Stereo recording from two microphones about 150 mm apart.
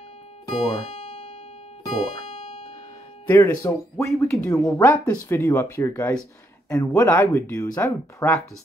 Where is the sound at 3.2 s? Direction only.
20° left (ahead or behind).